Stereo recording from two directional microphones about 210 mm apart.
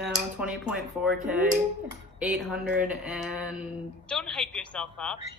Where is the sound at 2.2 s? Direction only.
Centre (ahead or behind).